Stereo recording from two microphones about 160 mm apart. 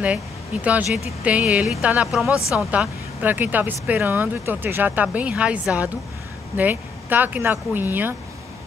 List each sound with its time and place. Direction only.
0.7 s speech: 10° right (ahead or behind)
2.3 s speech: 20° left (ahead or behind)
2.6 s speech: 5° right (ahead or behind)